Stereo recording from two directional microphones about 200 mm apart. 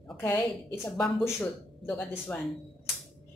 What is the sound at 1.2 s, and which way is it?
A woman's voice, 5° left (ahead or behind).